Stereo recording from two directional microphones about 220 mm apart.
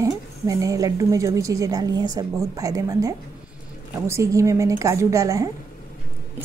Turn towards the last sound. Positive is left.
turn(degrees=-15)  # may be behind; listen again after turning